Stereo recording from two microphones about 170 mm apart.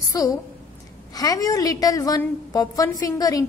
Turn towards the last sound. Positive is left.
turn(degrees=20)  # may be behind; listen again after turning